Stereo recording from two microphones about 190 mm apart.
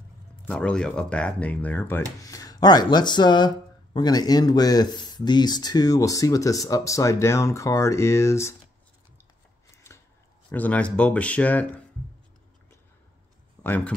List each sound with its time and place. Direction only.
0.5 s speech: 5° left (ahead or behind)
10.5 s speech: 10° left (ahead or behind)
13.6 s speech: 10° left (ahead or behind)